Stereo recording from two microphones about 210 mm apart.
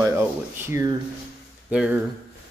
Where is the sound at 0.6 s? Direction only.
15° right (ahead or behind).